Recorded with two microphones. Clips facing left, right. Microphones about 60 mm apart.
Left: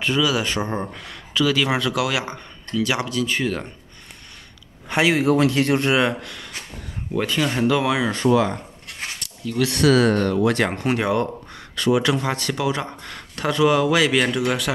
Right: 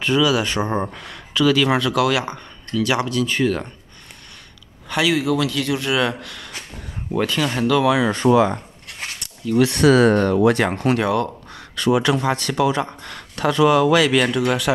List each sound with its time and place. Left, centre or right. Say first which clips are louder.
0.0 s speech: right 3 dB; centre
4.8 s a man's voice: left 1 dB; left
6.0 s speech: left 1 dB; centre
7.9 s speech: right 3 dB; centre
8.2 s speech: right 2 dB; centre
9.6 s speech: right 3 dB; right
10.7 s speech: right 2 dB; centre